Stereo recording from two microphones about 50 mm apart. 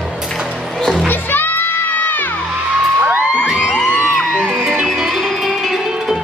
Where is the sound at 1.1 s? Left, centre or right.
Left.